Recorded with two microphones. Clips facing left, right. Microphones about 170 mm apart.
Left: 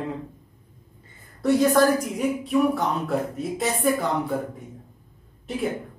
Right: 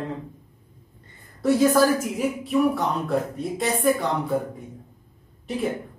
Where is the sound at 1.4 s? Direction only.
Centre (ahead or behind).